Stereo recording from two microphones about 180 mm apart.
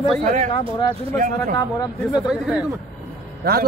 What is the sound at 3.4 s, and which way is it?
Speech, 60° right (ahead or behind).